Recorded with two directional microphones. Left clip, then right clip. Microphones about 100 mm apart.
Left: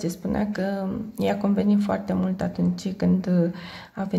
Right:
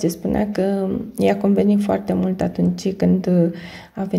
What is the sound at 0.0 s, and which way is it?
Speech, 30° right (ahead or behind).